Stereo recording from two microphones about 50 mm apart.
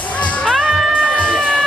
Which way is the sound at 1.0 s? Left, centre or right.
Left.